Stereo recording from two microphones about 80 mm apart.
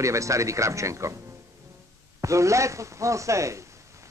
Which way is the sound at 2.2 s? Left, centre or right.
Right.